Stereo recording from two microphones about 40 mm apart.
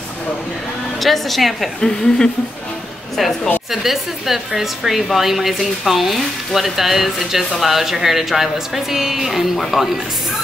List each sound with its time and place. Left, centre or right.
1.0 s speech: centre
1.8 s a woman's voice: centre
3.7 s speech: centre